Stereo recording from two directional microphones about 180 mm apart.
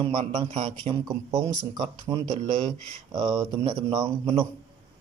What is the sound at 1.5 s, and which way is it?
Speech, 25° right (ahead or behind).